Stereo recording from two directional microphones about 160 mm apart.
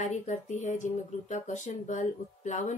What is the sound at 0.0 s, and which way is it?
Speech, 50° left (ahead or behind).